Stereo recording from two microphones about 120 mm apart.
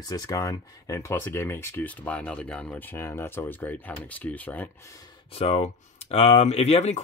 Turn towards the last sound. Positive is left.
turn(degrees=65)  # may be behind; listen again after turning